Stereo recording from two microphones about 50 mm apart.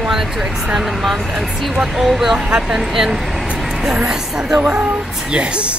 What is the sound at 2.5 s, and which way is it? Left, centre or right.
Speech, centre.